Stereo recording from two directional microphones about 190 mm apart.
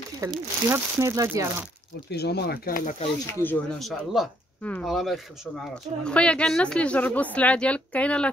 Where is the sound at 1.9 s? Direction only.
60° left (ahead or behind); by 3.1 s 45° left (ahead or behind).